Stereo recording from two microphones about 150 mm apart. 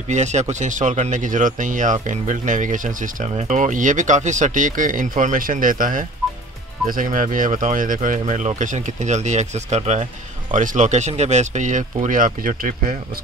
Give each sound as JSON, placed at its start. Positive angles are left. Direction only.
{"t": 0.1, "sound": "speech", "side_deg": -50}